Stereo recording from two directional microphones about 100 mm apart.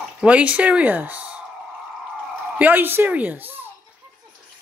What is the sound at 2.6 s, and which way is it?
Speech, 20° right (ahead or behind).